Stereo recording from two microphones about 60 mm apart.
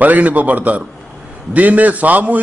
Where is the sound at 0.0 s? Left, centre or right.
Right.